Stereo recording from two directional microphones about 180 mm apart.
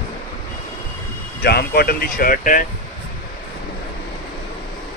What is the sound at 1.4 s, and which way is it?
Speech, 60° left (ahead or behind).